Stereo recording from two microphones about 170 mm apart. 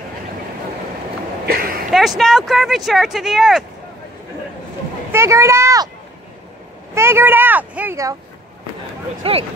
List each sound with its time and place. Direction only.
1.4 s a sound: 60° right (ahead or behind)
1.9 s speech: centre (ahead or behind)
5.1 s speech: 15° right (ahead or behind)
6.9 s speech: 15° right (ahead or behind)
9.2 s speech: 35° right (ahead or behind)